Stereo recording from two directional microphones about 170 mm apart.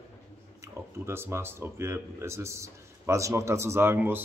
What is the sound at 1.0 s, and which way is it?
Speech, 15° right (ahead or behind).